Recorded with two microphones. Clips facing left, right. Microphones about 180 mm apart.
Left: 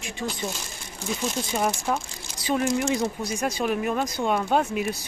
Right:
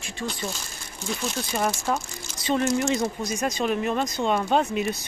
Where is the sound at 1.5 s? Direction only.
10° left (ahead or behind).